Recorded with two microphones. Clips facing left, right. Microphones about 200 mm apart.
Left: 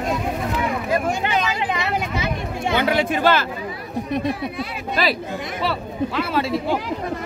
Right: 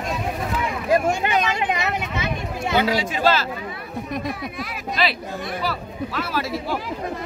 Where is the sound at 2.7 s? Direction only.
55° left (ahead or behind).